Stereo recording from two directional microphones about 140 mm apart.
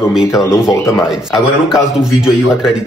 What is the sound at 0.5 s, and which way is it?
Speech, 20° left (ahead or behind).